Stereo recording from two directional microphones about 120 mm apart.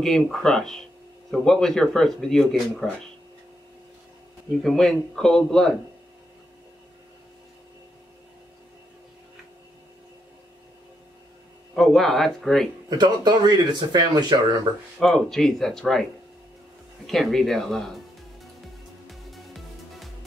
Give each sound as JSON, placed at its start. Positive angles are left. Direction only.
{"t": 0.0, "sound": "speech", "side_deg": 5}
{"t": 4.6, "sound": "speech", "side_deg": 5}
{"t": 11.7, "sound": "speech", "side_deg": 5}
{"t": 12.9, "sound": "speech", "side_deg": -35}
{"t": 15.0, "sound": "speech", "side_deg": 5}
{"t": 19.0, "sound": "music", "side_deg": 0}